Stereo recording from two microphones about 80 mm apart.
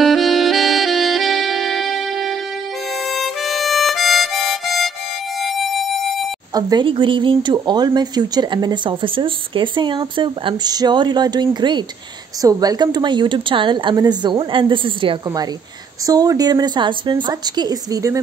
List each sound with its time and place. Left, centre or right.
0.0 s saxophone: centre
3.0 s harmonica: centre
5.4 s music: centre
6.5 s a woman's voice: right
7.5 s speech: right
12.4 s speech: right
13.9 s a woman's voice: right
16.1 s speech: right
17.3 s a woman's voice: right